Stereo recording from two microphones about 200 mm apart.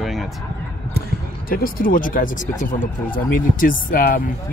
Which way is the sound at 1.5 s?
45° left (ahead or behind).